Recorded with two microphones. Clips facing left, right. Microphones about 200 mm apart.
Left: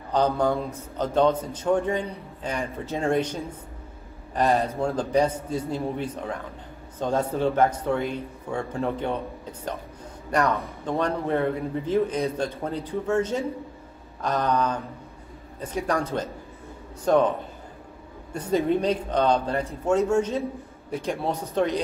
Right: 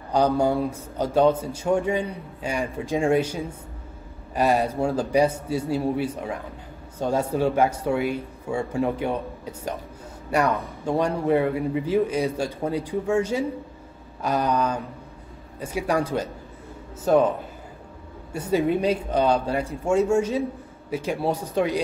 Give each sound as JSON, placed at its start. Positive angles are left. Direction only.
{"t": 0.1, "sound": "speech", "side_deg": -10}
{"t": 18.3, "sound": "speech", "side_deg": -10}